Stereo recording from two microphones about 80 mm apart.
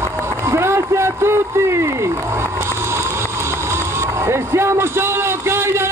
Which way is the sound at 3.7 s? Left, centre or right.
Right.